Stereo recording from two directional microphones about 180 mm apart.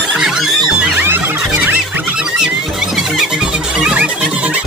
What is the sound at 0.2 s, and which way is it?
Music, centre (ahead or behind).